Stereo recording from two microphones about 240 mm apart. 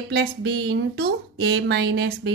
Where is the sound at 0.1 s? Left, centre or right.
Right.